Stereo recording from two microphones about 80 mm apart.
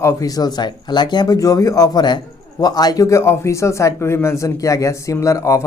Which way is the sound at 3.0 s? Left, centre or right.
Left.